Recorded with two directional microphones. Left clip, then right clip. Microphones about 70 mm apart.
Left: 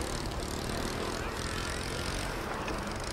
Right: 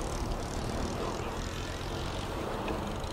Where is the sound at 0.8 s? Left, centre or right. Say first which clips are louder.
Even; left.